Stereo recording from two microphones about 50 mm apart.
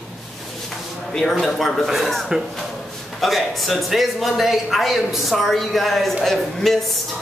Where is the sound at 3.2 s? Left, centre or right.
Centre.